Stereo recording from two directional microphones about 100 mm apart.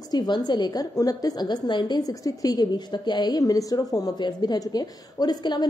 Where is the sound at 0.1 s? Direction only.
45° left (ahead or behind).